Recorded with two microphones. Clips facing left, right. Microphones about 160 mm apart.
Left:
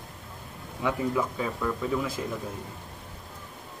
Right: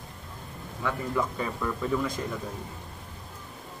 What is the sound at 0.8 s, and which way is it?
Speech, 15° left (ahead or behind).